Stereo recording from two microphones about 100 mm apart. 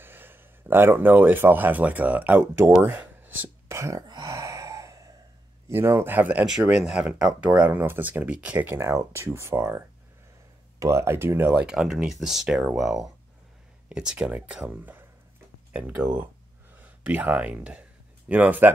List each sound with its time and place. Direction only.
0.0 s speech: 20° right (ahead or behind)
3.6 s speech: 30° right (ahead or behind)
4.1 s gasp: 35° right (ahead or behind)
5.7 s speech: 25° right (ahead or behind)
6.8 s speech: 5° right (ahead or behind); by 11.6 s 20° right (ahead or behind)
11.6 s speech: 5° right (ahead or behind)